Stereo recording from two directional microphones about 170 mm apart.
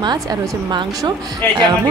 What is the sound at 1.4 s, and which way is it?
Speech, 10° left (ahead or behind).